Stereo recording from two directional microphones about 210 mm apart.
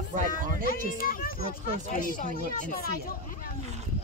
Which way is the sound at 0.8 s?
40° left (ahead or behind).